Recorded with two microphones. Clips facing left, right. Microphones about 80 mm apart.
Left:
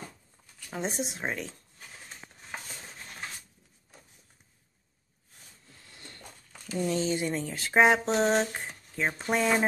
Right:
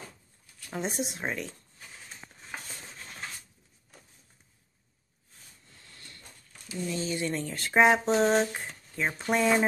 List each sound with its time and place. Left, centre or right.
0.7 s speech: centre
5.9 s a sound: left
6.7 s speech: left
7.1 s speech: left
7.3 s speech: centre